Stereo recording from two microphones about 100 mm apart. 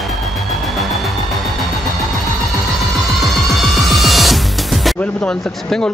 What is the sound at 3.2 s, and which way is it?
Music, centre (ahead or behind).